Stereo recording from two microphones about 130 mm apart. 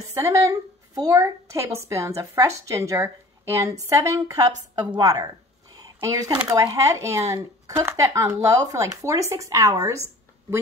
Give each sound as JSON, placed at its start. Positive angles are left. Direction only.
{"t": 0.1, "sound": "speech", "side_deg": -20}
{"t": 5.8, "sound": "a sound", "side_deg": -25}
{"t": 6.4, "sound": "speech", "side_deg": -25}